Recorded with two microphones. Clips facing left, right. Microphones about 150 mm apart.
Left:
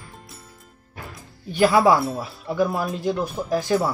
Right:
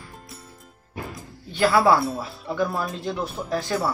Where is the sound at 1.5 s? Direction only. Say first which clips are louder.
Left 2 dB; 20° left (ahead or behind).